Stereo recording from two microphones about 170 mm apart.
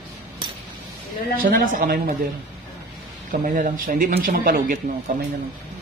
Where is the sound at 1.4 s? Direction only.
55° right (ahead or behind).